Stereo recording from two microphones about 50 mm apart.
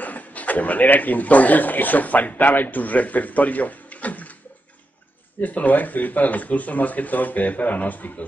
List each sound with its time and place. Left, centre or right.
0.0 s speech: left
5.4 s speech: left